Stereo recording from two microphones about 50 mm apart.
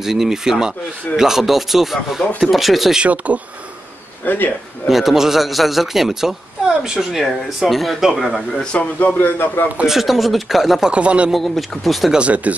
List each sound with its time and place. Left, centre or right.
0.0 s speech: centre
3.3 s speech: right
4.2 s speech: left
4.8 s speech: centre
8.7 s a man's voice: left
9.8 s speech: centre
10.9 s speech: right
11.3 s speech: centre
12.1 s speech: right